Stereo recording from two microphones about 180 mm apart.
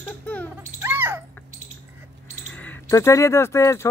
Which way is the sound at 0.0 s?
10° left (ahead or behind).